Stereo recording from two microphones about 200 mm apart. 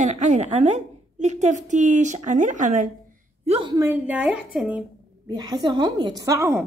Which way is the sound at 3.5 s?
20° right (ahead or behind).